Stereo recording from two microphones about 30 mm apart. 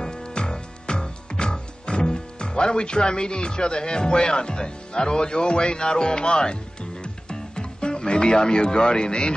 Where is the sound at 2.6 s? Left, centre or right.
Left.